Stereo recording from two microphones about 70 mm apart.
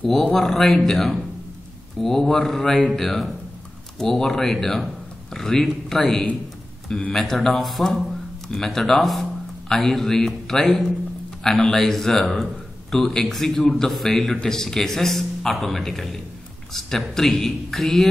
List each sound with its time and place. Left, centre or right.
0.1 s a man's voice: centre